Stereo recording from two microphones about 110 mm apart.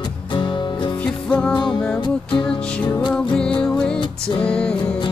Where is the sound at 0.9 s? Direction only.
10° left (ahead or behind).